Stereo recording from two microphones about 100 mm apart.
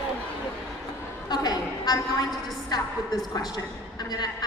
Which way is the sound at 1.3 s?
45° left (ahead or behind).